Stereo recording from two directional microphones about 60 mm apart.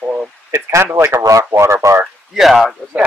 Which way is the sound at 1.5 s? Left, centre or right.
Right.